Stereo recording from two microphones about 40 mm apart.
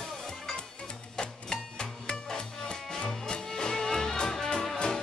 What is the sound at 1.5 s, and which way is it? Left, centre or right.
Music, centre.